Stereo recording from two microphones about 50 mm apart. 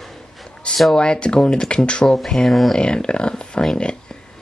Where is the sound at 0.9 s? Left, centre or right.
Centre.